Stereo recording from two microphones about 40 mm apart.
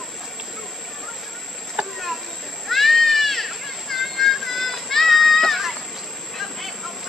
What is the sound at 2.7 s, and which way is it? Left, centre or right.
Cat, centre.